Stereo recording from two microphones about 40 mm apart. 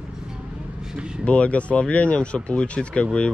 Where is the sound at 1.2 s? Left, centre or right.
Left.